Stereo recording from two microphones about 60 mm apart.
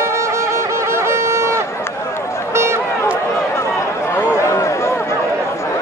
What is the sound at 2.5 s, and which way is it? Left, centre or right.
Run, right.